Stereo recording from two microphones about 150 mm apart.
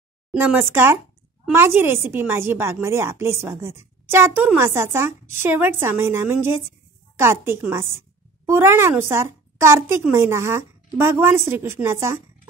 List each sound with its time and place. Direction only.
0.3 s a woman's voice: 10° right (ahead or behind)